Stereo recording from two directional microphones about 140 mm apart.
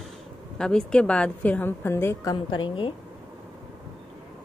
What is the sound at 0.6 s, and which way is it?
A woman's voice, 5° left (ahead or behind).